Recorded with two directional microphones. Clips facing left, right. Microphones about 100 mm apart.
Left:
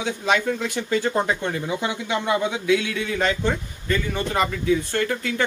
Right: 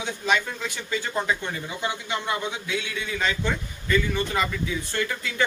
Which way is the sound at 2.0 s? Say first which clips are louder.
Left 6 dB; 90° left.